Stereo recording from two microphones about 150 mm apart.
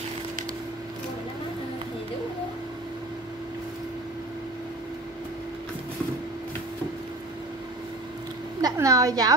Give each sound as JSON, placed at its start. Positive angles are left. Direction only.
{"t": 8.5, "sound": "speech", "side_deg": -20}